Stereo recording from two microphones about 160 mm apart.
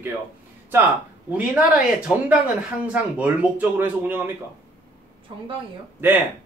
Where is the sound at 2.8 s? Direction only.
10° right (ahead or behind).